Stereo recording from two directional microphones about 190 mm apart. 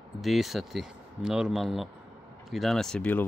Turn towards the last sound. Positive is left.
turn(degrees=5)  # may be behind; listen again after turning